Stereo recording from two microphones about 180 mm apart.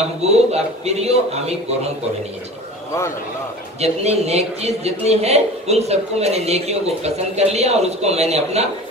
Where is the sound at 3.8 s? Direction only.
35° right (ahead or behind).